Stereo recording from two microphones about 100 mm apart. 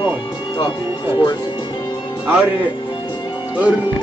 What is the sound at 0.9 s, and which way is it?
Speech, 20° right (ahead or behind).